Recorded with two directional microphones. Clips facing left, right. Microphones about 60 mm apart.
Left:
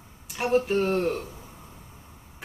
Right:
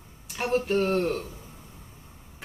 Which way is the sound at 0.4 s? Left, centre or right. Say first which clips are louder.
Left 2 dB; centre.